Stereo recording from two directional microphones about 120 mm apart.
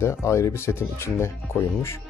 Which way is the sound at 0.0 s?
25° left (ahead or behind).